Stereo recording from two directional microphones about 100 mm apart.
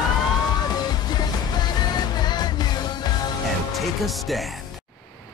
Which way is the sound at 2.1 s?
45° left (ahead or behind).